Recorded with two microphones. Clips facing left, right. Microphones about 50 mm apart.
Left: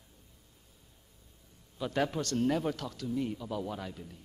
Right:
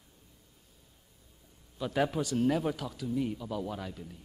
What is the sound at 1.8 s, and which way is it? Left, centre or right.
A man's voice, centre.